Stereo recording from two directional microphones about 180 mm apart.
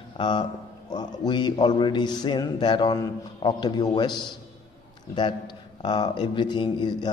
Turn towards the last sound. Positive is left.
turn(degrees=25)  # may be behind; listen again after turning